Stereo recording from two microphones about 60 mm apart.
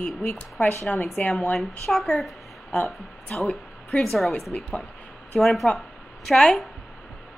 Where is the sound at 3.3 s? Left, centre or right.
Left.